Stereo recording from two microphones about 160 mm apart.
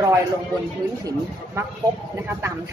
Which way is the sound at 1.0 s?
15° right (ahead or behind).